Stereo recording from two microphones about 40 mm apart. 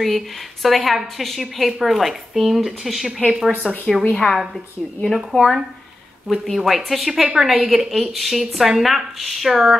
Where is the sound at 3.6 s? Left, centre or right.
Left.